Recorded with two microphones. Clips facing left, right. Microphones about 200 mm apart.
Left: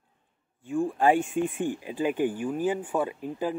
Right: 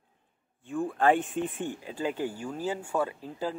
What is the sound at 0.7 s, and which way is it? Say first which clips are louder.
Speech: left 2 dB; 10° left (ahead or behind).